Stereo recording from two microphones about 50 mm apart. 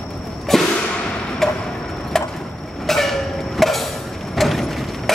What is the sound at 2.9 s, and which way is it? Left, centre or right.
Vehicle, centre.